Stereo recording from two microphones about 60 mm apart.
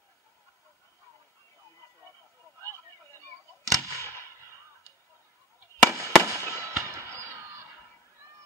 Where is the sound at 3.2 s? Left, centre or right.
Right.